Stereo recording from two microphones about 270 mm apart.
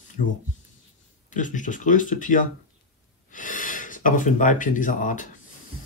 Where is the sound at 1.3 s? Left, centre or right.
Left.